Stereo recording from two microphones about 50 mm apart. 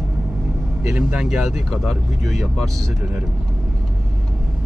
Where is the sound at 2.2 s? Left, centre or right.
Centre.